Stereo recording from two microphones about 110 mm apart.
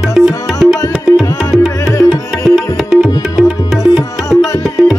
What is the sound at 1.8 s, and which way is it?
Music, 30° left (ahead or behind).